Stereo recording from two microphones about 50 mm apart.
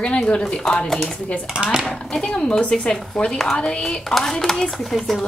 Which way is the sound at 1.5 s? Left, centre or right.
Centre.